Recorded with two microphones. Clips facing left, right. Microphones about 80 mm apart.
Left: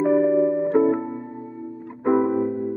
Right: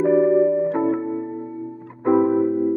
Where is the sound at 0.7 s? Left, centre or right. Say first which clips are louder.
Left 2 dB; centre.